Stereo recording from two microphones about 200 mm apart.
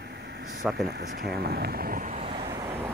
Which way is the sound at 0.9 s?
50° right (ahead or behind).